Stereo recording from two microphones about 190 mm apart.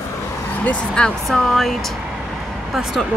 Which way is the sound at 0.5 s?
5° left (ahead or behind).